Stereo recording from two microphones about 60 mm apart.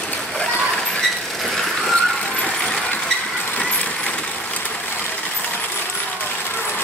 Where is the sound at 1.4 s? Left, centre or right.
Centre.